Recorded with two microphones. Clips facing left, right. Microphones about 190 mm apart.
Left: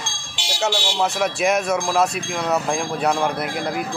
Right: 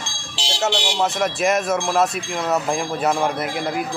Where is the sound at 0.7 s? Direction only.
20° right (ahead or behind).